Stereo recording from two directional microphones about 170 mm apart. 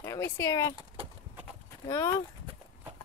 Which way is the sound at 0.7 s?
30° right (ahead or behind).